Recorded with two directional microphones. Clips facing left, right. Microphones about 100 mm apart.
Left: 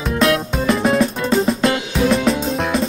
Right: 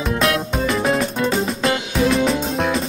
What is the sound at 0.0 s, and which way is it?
Music, centre (ahead or behind).